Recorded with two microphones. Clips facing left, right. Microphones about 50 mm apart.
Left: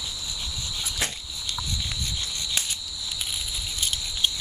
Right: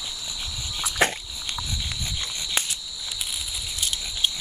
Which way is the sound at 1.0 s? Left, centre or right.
Right.